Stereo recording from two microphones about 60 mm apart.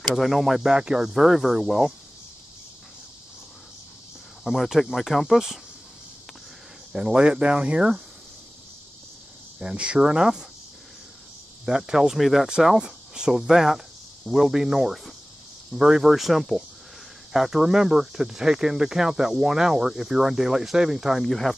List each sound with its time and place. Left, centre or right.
0.0 s speech: centre
4.5 s speech: centre
6.9 s speech: centre
9.6 s speech: centre
11.6 s speech: centre